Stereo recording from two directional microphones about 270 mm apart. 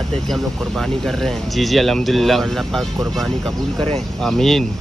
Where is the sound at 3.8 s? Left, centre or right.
Right.